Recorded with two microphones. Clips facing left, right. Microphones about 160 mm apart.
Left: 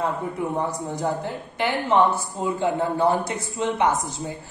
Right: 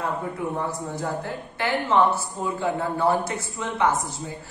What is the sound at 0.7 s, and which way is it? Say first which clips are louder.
A woman's voice: left 3 dB; 20° left (ahead or behind).